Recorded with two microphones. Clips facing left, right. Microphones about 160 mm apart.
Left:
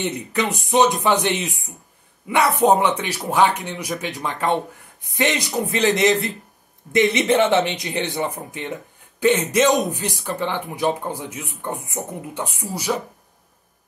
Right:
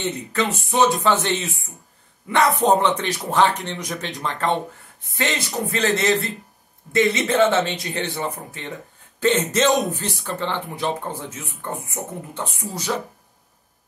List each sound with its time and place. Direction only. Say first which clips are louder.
0.0 s speech: left 1 dB; 15° left (ahead or behind)